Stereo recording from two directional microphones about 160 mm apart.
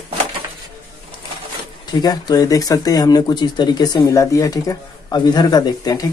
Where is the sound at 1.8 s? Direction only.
25° left (ahead or behind).